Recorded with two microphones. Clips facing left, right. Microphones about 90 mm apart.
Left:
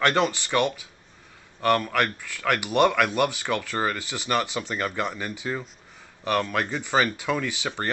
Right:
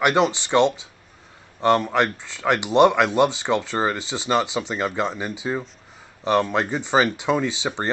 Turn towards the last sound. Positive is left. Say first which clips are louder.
# right 4 dB
turn(degrees=-20)  # may be behind; listen again after turning